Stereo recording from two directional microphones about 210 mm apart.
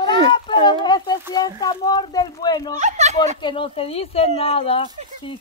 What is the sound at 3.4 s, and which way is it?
Speech, 25° left (ahead or behind).